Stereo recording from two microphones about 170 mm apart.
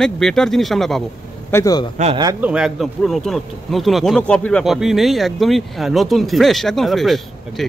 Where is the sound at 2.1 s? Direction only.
20° right (ahead or behind).